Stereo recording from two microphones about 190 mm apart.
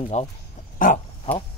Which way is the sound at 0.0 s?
30° left (ahead or behind).